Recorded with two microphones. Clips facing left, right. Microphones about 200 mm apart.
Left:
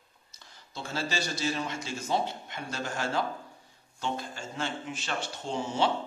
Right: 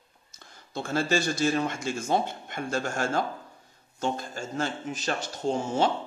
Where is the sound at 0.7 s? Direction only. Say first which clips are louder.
Right 7 dB; 50° right (ahead or behind).